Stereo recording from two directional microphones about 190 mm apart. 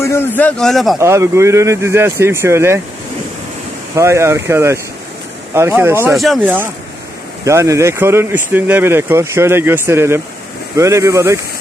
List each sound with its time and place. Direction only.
0.0 s a sound: 15° left (ahead or behind)
0.4 s speech: 5° left (ahead or behind)
0.9 s speech: 15° right (ahead or behind)
3.9 s speech: 15° right (ahead or behind)
6.1 s speech: centre (ahead or behind)
6.4 s speech: 10° right (ahead or behind)